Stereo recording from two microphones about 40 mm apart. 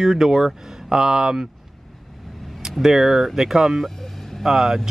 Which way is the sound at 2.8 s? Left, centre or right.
Centre.